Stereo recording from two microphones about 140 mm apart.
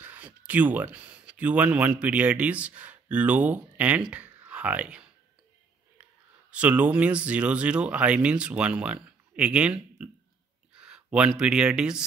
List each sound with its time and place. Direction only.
0.0 s speech: 10° right (ahead or behind)
6.5 s speech: 10° right (ahead or behind)